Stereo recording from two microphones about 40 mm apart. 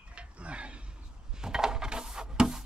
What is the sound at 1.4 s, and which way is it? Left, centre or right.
Wood, centre.